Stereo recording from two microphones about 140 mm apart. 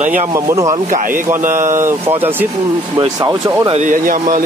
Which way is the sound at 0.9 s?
75° right (ahead or behind).